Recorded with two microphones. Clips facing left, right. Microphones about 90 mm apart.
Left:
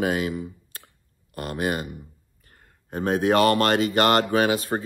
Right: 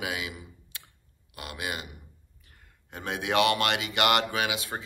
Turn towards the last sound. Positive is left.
turn(degrees=45)  # may be behind; listen again after turning